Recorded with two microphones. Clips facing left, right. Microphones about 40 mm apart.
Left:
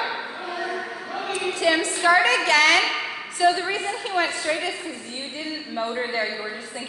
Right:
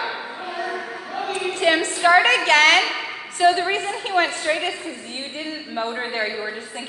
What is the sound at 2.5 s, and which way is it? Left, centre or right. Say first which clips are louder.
Speech: right 3 dB; right.